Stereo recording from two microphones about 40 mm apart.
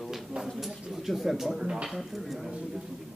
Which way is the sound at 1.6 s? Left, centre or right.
Centre.